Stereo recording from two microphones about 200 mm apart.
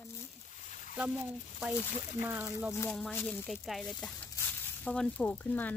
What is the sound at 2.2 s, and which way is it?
Speech, 10° right (ahead or behind).